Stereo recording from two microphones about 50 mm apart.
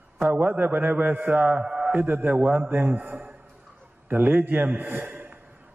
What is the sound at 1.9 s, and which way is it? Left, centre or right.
A man's voice, right.